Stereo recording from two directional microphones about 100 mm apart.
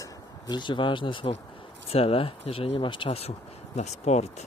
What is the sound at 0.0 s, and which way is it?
Speech, 45° left (ahead or behind).